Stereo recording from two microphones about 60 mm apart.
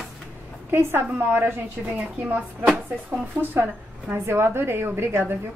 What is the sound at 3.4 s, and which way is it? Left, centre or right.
Speech, right.